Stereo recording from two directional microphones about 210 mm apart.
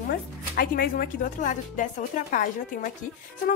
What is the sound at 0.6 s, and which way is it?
Speech, 45° left (ahead or behind).